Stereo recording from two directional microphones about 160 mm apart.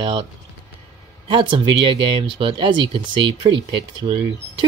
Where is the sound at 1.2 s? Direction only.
30° right (ahead or behind).